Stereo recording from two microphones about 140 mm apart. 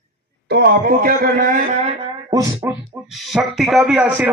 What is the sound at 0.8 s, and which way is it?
Speech, 90° right.